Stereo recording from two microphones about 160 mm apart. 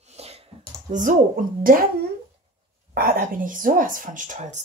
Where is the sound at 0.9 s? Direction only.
55° right (ahead or behind).